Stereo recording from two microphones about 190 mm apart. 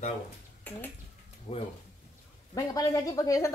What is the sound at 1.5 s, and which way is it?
Speech, 35° left (ahead or behind).